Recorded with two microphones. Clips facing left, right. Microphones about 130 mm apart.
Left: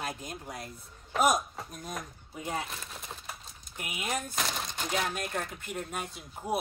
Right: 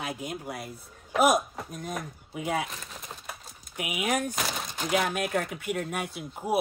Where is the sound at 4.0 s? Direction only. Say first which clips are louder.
Right 6 dB; 70° right (ahead or behind).